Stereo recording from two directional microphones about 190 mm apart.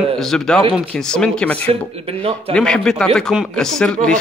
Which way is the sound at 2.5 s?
5° left (ahead or behind).